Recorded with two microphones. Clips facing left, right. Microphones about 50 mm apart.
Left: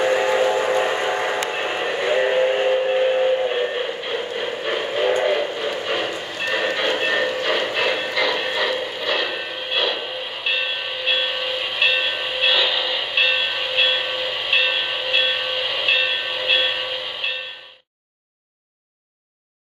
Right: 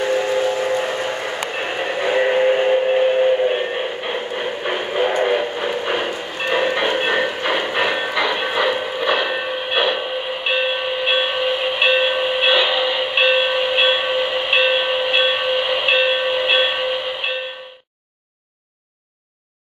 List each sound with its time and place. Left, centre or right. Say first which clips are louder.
0.0 s train: left 1 dB; left
1.6 s train: right 1 dB; centre
4.1 s a sound: right 1 dB; centre
5.2 s train: right 2 dB; centre